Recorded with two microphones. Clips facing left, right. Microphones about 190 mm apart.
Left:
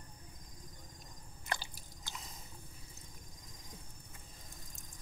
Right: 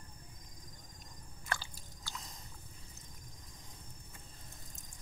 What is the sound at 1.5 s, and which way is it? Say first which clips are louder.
Biting: even; 20° left (ahead or behind).